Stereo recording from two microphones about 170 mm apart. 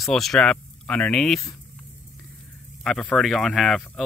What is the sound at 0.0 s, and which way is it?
Speech, centre (ahead or behind).